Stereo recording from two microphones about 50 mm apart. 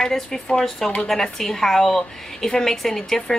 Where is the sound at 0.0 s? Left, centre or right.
Centre.